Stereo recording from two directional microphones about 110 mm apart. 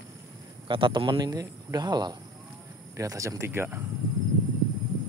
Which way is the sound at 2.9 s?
30° right (ahead or behind).